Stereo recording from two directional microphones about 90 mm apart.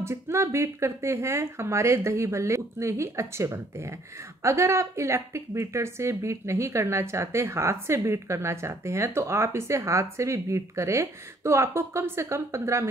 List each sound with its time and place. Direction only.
0.0 s speech: 30° right (ahead or behind)